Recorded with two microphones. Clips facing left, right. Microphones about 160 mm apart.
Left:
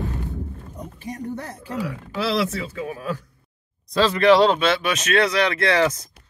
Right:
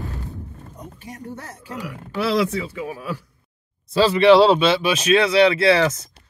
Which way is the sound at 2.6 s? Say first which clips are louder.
Even; 10° right (ahead or behind).